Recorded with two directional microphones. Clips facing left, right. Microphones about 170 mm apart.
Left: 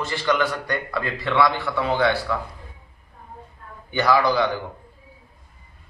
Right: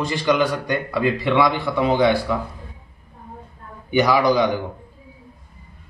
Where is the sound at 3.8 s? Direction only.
15° right (ahead or behind).